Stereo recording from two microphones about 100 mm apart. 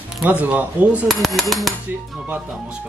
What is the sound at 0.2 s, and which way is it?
Speech, 15° right (ahead or behind).